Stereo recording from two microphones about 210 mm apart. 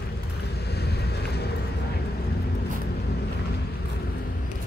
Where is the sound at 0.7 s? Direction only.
50° left (ahead or behind).